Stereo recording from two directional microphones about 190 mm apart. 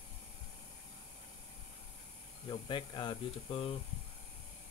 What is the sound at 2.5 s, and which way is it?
Speech, 25° left (ahead or behind).